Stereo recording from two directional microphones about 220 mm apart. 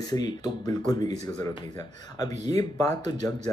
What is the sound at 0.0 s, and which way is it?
Speech, 20° left (ahead or behind).